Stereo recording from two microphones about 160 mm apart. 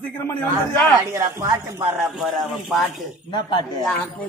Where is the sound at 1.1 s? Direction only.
15° right (ahead or behind).